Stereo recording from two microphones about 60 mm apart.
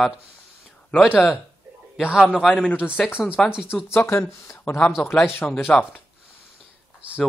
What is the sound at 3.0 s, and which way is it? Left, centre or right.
Speech, centre.